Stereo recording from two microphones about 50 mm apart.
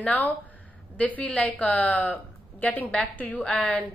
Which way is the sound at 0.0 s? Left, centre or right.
Left.